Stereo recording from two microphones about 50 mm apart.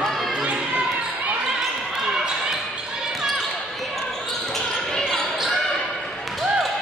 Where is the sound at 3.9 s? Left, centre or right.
Centre.